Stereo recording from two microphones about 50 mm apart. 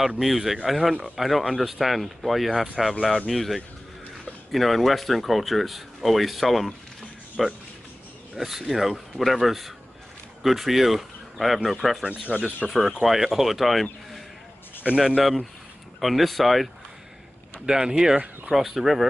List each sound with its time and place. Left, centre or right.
0.2 s speech: centre
12.3 s speech: centre
12.6 s speech: centre
15.0 s speech: centre
17.6 s speech: centre
18.1 s speech: right
18.5 s speech: centre